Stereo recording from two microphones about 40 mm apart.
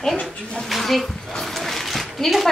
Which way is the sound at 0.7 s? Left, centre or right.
Centre.